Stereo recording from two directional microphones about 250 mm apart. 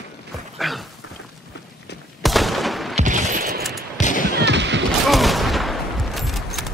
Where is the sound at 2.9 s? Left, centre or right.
Right.